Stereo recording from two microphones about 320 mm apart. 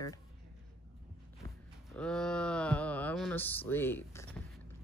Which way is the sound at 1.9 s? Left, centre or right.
Centre.